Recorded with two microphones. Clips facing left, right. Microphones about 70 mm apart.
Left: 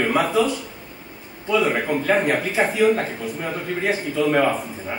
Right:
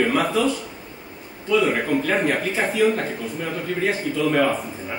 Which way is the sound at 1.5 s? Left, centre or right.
Centre.